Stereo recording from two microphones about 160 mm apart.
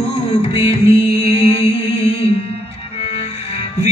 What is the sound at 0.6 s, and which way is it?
Music, 40° left (ahead or behind).